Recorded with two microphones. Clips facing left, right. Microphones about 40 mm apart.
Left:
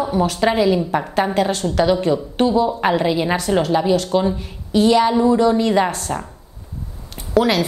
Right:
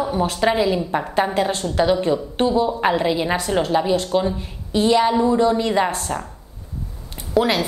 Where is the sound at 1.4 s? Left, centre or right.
Right.